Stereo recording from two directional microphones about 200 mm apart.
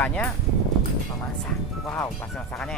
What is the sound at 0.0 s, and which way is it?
Speech, 5° left (ahead or behind).